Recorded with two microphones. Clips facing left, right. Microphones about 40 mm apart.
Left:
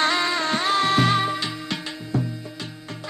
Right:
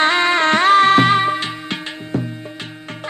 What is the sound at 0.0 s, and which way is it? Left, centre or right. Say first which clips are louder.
Music: right 7 dB; right.